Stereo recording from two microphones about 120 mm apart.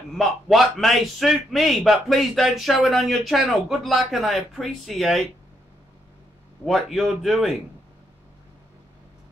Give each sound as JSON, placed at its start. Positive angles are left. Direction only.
{"t": 0.2, "sound": "a man's voice", "side_deg": 0}
{"t": 6.6, "sound": "a man's voice", "side_deg": 0}